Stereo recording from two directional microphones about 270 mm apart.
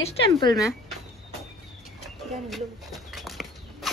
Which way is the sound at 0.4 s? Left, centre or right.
Centre.